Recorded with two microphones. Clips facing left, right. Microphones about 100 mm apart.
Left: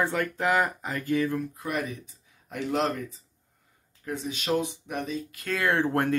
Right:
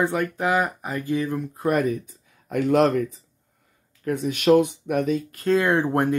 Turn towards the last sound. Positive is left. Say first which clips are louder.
# right 4 dB
turn(degrees=-20)  # may be behind; listen again after turning